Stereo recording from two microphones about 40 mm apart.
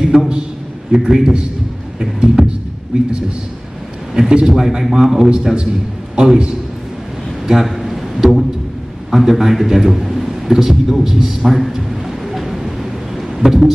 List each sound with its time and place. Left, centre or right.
0.1 s a man's voice: centre
2.0 s music: centre
2.9 s a man's voice: right
4.3 s a man's voice: right
4.6 s a man's voice: centre
5.3 s a man's voice: right
7.4 s a sound: centre